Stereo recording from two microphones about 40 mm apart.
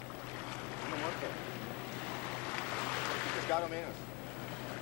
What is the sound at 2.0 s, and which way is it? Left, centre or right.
Waves, centre.